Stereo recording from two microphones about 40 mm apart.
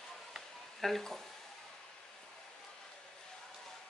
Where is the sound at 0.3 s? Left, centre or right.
Centre.